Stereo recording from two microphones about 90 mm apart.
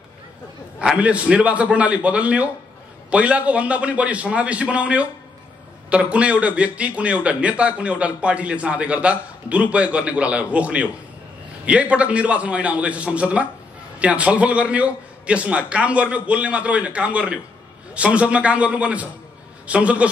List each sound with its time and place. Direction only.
0.7 s a man's voice: 15° right (ahead or behind)